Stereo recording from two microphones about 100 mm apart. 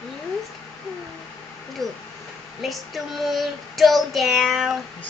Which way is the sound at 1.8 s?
Centre (ahead or behind).